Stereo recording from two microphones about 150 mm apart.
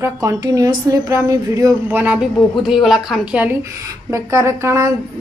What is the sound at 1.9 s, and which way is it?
A woman's voice, 10° right (ahead or behind).